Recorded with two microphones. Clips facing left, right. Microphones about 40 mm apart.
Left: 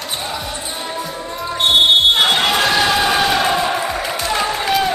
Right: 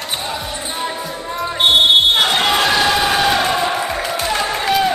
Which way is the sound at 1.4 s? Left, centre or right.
Right.